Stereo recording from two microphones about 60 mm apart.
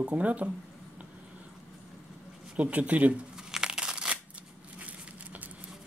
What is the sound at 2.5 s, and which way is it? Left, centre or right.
Speech, right.